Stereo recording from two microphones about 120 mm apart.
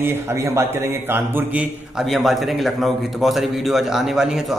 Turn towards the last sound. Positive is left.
turn(degrees=-5)  # may be behind; listen again after turning